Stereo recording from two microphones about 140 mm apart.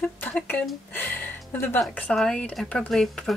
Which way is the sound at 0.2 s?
10° left (ahead or behind).